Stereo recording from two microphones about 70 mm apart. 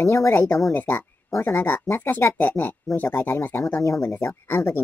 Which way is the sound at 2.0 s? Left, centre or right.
Left.